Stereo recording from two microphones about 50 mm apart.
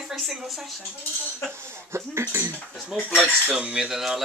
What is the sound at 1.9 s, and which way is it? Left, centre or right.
Speech, right.